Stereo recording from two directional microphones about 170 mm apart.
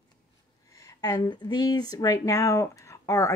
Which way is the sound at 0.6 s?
20° left (ahead or behind).